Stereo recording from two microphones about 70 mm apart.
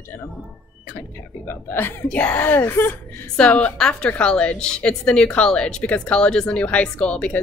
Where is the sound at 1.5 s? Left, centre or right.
Left.